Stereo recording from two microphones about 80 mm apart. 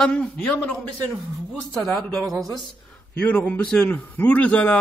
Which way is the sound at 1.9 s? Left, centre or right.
Centre.